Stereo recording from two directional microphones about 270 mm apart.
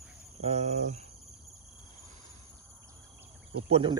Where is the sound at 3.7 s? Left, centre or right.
Centre.